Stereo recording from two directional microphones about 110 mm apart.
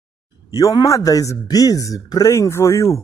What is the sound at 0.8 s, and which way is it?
Speech, 30° left (ahead or behind).